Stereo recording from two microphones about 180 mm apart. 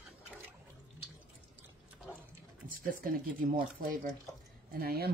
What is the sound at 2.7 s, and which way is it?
Speech, 50° right (ahead or behind).